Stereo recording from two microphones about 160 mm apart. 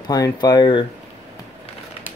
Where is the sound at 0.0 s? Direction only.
25° left (ahead or behind).